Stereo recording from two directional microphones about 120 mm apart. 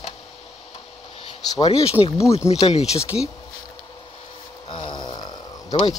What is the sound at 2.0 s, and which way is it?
Speech, 55° left (ahead or behind).